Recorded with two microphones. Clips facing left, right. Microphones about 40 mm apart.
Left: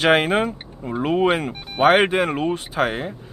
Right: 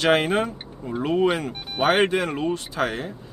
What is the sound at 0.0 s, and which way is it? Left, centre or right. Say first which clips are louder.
Speech: left 3 dB; left.